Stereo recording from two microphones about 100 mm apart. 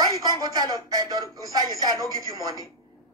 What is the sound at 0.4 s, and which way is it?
Speech, 35° right (ahead or behind).